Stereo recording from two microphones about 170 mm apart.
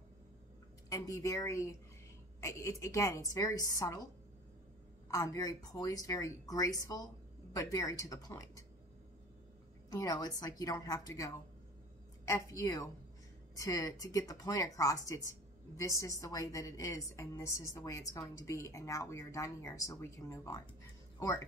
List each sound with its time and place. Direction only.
0.8 s speech: 20° left (ahead or behind)
9.8 s speech: 20° left (ahead or behind)